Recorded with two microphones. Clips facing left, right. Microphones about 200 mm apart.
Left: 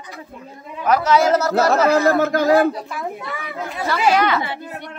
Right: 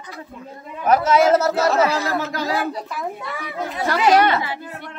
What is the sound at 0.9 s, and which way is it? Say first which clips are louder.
Speech: right 1 dB; 25° right (ahead or behind).